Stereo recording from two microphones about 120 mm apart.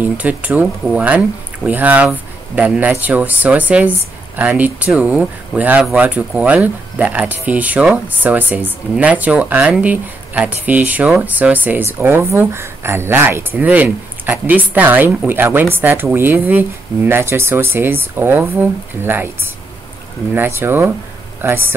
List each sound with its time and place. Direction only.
0.0 s speech: 10° right (ahead or behind)